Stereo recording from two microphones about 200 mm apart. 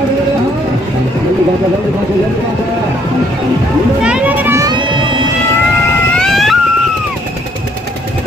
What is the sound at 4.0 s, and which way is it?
Music, 5° right (ahead or behind).